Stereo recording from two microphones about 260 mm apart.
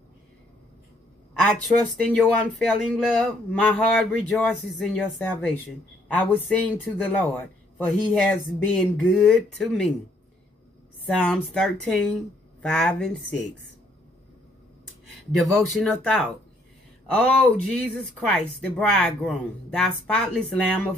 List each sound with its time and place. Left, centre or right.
1.4 s speech: centre
6.9 s speech: centre
11.1 s speech: centre
15.4 s speech: centre